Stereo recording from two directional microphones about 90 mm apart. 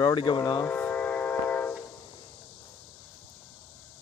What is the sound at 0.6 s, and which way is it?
Train, 20° left (ahead or behind).